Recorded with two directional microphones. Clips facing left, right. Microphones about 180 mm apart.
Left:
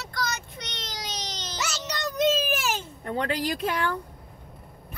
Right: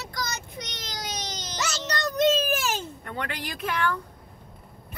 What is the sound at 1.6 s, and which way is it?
Child singing, 5° left (ahead or behind).